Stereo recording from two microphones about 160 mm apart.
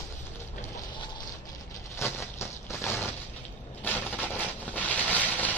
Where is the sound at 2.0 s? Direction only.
15° left (ahead or behind).